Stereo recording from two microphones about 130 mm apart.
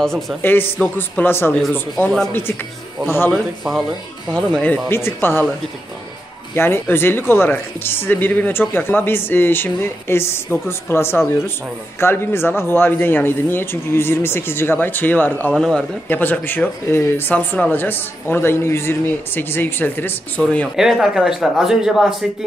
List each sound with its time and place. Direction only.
0.4 s speech: 15° left (ahead or behind)
2.0 s speech: 5° left (ahead or behind)
6.5 s speech: 20° left (ahead or behind)
15.5 s speech: 5° left (ahead or behind)
16.1 s speech: 15° left (ahead or behind)
20.7 s speech: 5° right (ahead or behind)